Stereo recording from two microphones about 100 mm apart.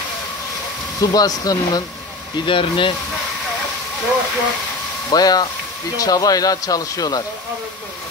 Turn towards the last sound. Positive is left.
turn(degrees=40)  # may be behind; listen again after turning